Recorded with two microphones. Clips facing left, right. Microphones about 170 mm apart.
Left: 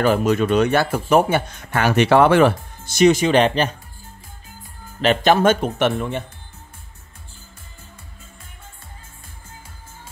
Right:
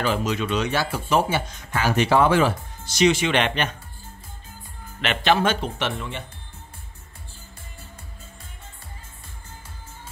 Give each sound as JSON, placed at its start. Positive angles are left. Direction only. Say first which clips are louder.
{"t": 0.0, "sound": "speech", "louder": "left 7 dB", "side_deg": 50}
{"t": 5.0, "sound": "a man's voice", "louder": "left 6 dB", "side_deg": 40}